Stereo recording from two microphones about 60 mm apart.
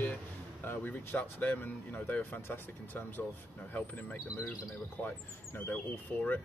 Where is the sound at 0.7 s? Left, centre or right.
Left.